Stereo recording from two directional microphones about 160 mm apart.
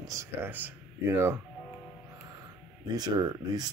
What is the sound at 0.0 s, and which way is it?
Speech, 20° right (ahead or behind).